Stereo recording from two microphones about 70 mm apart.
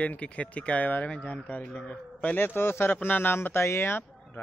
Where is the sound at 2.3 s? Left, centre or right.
Left.